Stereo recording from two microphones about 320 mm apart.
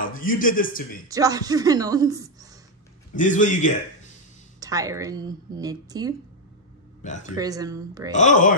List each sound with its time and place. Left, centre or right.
0.0 s a man's voice: left
1.0 s speech: centre
3.2 s a man's voice: left
4.6 s speech: centre
7.0 s a man's voice: left
7.3 s speech: centre
8.1 s a man's voice: left